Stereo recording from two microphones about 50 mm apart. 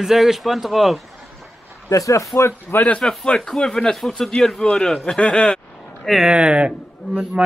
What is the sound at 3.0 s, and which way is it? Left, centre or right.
A man's voice, centre.